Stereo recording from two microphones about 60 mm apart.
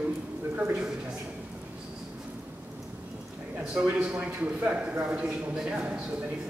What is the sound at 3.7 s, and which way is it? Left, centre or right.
A man's voice, centre.